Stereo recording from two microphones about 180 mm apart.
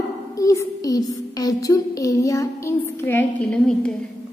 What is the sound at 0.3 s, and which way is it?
A woman's voice, 15° left (ahead or behind).